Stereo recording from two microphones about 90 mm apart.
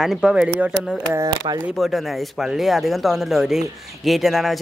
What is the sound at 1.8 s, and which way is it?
Speech, centre (ahead or behind).